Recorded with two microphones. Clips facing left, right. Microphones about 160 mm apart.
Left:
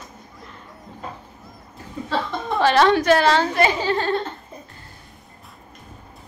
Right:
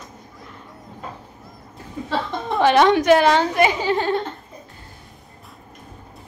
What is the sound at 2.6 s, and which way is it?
A woman's voice, 15° right (ahead or behind).